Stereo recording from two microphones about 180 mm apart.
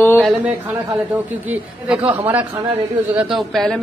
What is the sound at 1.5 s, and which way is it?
Speech, 10° right (ahead or behind).